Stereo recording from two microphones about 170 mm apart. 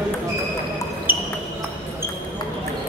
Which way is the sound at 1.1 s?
10° right (ahead or behind).